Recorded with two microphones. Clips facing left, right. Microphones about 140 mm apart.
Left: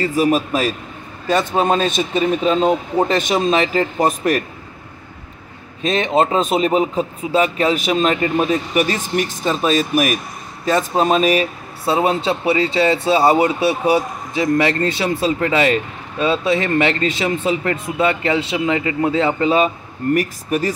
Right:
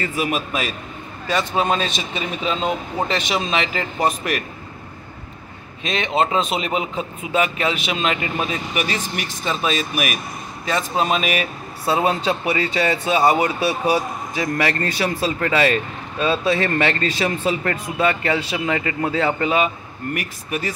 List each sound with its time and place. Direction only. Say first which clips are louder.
0.0 s a man's voice: left 7 dB; 35° left (ahead or behind)
5.8 s a man's voice: left 4 dB; 40° left (ahead or behind)
11.8 s speech: left 2 dB; 25° left (ahead or behind)
20.2 s a man's voice: left 8 dB; 40° left (ahead or behind)